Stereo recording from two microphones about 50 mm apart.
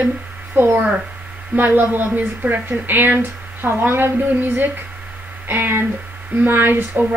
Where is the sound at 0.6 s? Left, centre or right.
Right.